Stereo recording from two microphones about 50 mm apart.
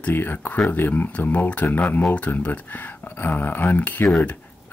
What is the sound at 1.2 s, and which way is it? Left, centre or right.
Speech, left.